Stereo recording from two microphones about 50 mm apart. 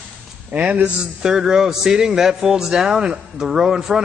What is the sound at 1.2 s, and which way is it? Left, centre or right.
A man's voice, centre.